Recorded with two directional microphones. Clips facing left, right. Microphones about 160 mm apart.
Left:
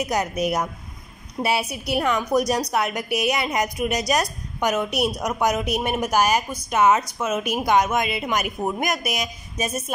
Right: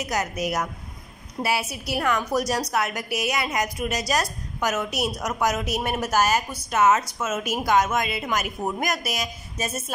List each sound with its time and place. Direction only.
0.0 s a woman's voice: 20° left (ahead or behind)